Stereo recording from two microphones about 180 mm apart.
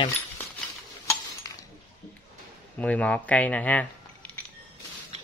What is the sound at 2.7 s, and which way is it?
Speech, 5° left (ahead or behind).